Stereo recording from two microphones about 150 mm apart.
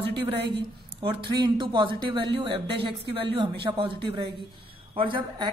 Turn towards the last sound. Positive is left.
turn(degrees=-30)  # may be behind; listen again after turning